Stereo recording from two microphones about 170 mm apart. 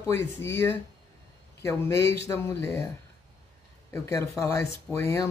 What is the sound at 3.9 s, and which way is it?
Speech, 15° left (ahead or behind).